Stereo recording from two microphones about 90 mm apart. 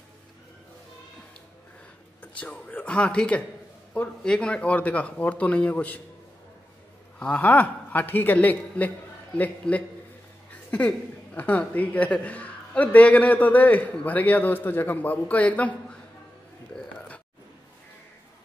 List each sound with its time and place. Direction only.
2.3 s a woman's voice: 15° left (ahead or behind)
7.2 s a man's voice: 15° left (ahead or behind)